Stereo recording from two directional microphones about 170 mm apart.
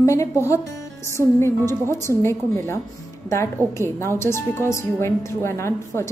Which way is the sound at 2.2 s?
15° left (ahead or behind).